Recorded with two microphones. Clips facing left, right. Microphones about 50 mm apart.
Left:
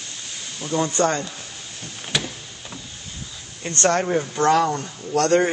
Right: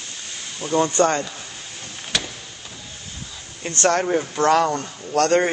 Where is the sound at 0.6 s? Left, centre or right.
Right.